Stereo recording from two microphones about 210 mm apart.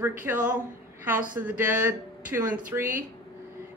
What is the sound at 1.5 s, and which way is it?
Speech, 10° right (ahead or behind).